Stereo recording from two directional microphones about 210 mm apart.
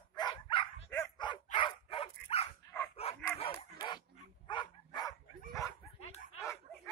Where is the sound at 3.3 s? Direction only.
25° left (ahead or behind).